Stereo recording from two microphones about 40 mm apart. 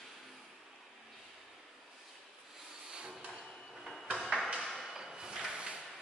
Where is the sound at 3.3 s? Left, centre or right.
Centre.